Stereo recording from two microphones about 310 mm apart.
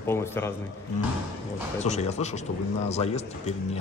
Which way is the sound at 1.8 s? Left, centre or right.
Left.